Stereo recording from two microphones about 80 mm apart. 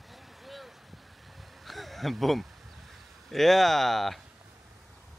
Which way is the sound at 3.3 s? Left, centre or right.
Centre.